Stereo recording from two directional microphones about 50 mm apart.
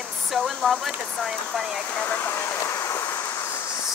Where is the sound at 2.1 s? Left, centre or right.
Left.